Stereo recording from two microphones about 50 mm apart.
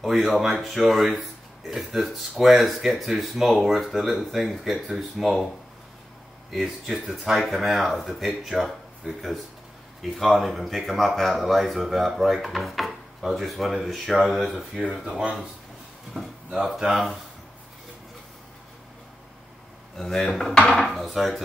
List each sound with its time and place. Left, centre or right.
0.0 s speech: centre
6.5 s speech: centre
10.1 s speech: centre
14.8 s speech: centre
20.0 s speech: centre